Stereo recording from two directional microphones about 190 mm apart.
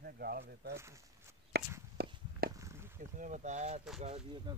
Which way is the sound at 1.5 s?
60° right (ahead or behind).